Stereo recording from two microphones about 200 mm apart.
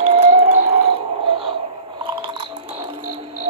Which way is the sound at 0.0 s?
30° right (ahead or behind).